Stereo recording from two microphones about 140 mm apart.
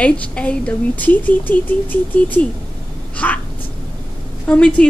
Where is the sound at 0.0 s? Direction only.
10° left (ahead or behind).